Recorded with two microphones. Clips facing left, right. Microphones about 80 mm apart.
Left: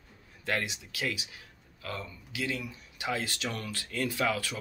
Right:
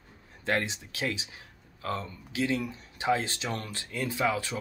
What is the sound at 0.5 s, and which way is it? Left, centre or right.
Speech, right.